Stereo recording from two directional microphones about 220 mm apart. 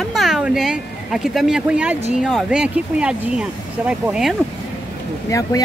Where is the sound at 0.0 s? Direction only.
Centre (ahead or behind).